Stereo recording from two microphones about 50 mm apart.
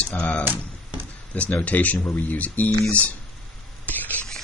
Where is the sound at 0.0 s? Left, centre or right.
Left.